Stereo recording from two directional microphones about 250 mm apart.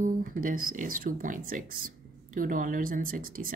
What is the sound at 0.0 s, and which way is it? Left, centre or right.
Speech, right.